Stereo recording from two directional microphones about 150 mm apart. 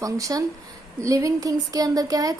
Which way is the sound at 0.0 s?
20° right (ahead or behind).